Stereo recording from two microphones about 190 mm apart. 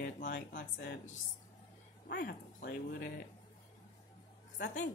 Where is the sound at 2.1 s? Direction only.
50° left (ahead or behind).